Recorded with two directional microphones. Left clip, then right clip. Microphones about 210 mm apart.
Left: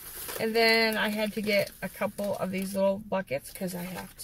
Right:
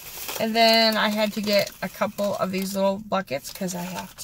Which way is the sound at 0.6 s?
25° right (ahead or behind).